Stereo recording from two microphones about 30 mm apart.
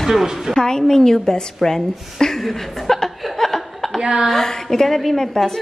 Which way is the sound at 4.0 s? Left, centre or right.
Right.